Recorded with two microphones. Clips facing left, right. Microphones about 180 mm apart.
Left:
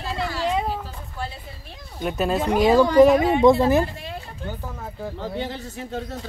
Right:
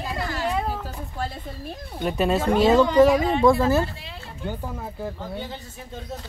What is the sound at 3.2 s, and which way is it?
Speech, 20° left (ahead or behind).